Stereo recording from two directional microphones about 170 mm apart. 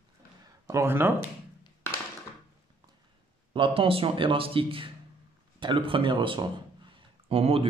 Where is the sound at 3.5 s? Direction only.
30° right (ahead or behind).